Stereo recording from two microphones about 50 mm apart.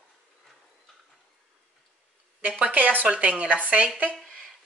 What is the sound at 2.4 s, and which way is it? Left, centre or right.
Speech, right.